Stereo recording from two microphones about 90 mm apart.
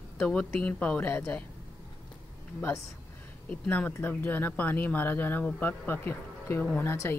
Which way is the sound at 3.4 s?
20° left (ahead or behind).